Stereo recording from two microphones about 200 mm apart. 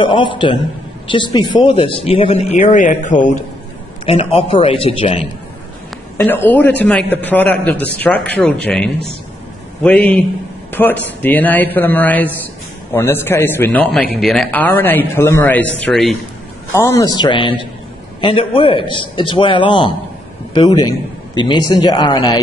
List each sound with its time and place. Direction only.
0.0 s speech: 25° left (ahead or behind)
6.1 s a man's voice: 10° left (ahead or behind)
16.7 s speech: 15° left (ahead or behind)